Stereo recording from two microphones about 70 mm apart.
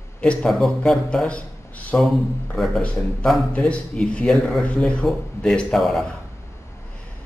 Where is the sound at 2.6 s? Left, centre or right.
Centre.